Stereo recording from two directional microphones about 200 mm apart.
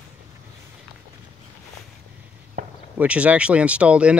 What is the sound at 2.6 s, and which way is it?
Chop, 40° right (ahead or behind).